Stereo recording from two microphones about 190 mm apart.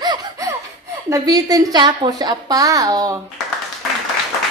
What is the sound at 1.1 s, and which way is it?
A woman's voice, 20° right (ahead or behind).